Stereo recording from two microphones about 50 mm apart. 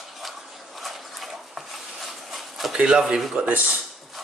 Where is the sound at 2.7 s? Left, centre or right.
Centre.